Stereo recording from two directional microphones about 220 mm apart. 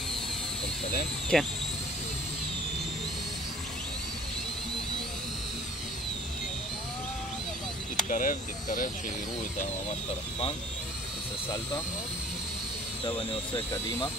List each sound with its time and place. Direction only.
1.3 s speech: centre (ahead or behind)
8.1 s speech: 35° left (ahead or behind)
13.0 s speech: 25° left (ahead or behind)